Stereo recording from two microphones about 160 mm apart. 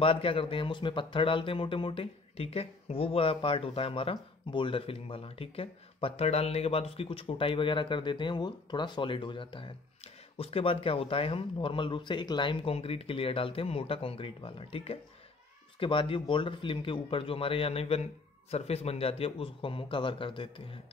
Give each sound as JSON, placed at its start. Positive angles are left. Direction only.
{"t": 0.0, "sound": "speech", "side_deg": 35}